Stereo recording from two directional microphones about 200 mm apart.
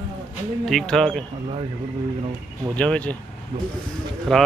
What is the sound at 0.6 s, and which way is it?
Speech, centre (ahead or behind).